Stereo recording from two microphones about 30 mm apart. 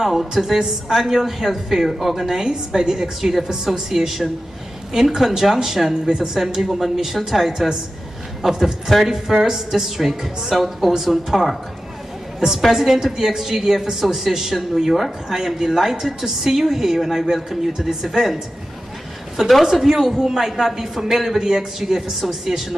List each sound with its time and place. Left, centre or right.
0.0 s speech: centre
2.4 s a woman's voice: right
3.2 s a man's voice: centre
12.7 s speech: centre
19.3 s speech: centre
21.4 s speech: centre